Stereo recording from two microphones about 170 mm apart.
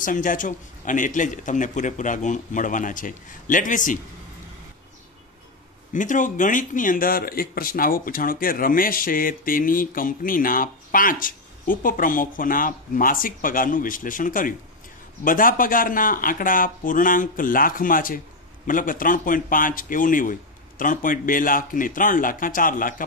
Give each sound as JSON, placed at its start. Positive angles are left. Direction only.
{"t": 0.0, "sound": "a man's voice", "side_deg": 50}
{"t": 5.9, "sound": "a man's voice", "side_deg": 50}